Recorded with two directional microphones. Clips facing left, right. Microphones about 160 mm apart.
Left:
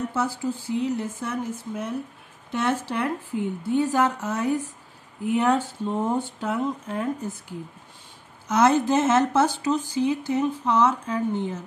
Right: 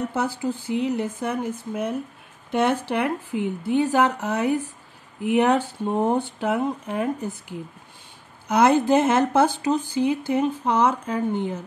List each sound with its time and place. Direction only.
0.1 s speech: 65° right (ahead or behind)
8.5 s speech: 60° right (ahead or behind)